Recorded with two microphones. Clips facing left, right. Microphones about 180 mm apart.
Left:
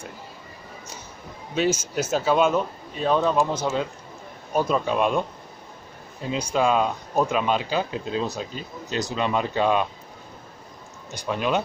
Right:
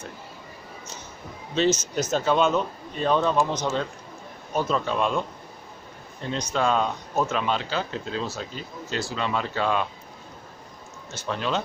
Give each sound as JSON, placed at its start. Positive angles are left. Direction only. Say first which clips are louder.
{"t": 1.5, "sound": "speech", "louder": "right 1 dB", "side_deg": 10}
{"t": 6.2, "sound": "speech", "louder": "left 2 dB", "side_deg": 10}
{"t": 11.1, "sound": "speech", "louder": "left 3 dB", "side_deg": 15}